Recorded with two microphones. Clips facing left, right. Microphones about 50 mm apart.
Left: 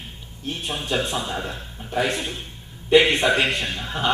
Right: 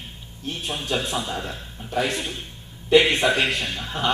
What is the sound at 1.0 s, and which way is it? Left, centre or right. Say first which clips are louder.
A man's voice: left 1 dB; centre.